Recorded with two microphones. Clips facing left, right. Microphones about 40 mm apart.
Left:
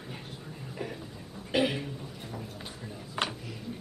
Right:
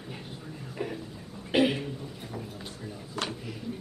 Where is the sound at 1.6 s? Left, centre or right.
Centre.